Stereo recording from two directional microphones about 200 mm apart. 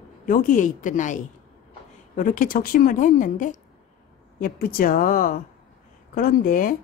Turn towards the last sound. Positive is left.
turn(degrees=45)  # may be behind; listen again after turning